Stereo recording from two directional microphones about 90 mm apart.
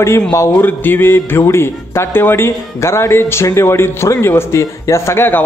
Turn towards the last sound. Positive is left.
turn(degrees=25)  # may be behind; listen again after turning